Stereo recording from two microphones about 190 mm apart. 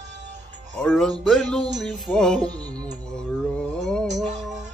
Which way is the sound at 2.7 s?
5° left (ahead or behind).